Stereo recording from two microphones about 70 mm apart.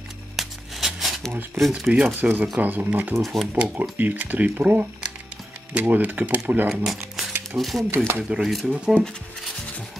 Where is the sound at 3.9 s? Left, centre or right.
Right.